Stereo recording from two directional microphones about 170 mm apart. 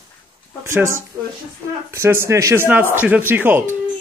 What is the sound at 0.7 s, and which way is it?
Speech, 15° right (ahead or behind).